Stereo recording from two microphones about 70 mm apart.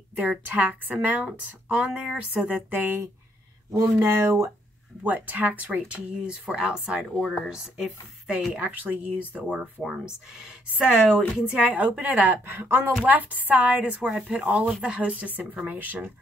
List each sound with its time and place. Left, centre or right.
0.2 s a woman's voice: right
3.7 s speech: right
5.0 s a woman's voice: right
8.5 s a woman's voice: right
9.8 s speech: left
10.3 s speech: centre
11.6 s a woman's voice: right
14.4 s a woman's voice: right